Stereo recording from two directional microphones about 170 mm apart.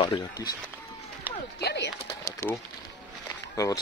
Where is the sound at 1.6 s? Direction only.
80° left.